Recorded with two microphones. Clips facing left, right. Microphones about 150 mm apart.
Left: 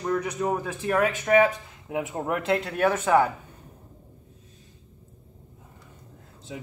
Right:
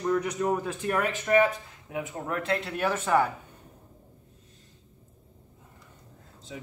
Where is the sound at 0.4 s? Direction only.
10° left (ahead or behind).